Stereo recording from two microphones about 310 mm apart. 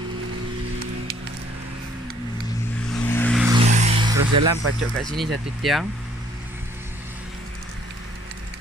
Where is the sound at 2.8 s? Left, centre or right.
Centre.